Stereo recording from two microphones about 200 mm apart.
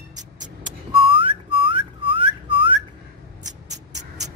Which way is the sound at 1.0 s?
25° right (ahead or behind).